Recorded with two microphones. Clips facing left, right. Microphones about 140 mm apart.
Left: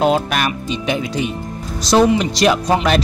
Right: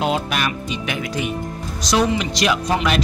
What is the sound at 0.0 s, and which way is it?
Speech, 45° left (ahead or behind).